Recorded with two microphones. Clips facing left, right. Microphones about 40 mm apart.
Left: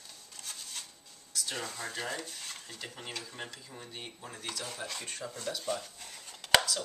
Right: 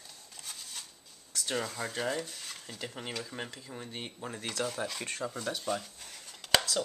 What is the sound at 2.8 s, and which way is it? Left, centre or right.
Speech, centre.